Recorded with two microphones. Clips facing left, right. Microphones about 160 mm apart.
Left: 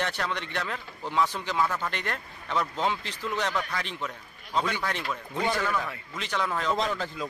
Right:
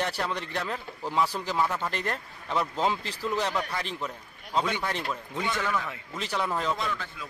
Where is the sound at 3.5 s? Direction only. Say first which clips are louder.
Right 1 dB; 30° right (ahead or behind).